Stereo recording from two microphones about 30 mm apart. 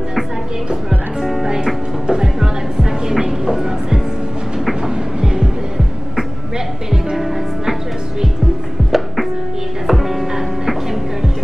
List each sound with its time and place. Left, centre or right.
0.8 s music: centre
2.0 s music: right
3.1 s train: centre
4.8 s music: right
8.9 s music: centre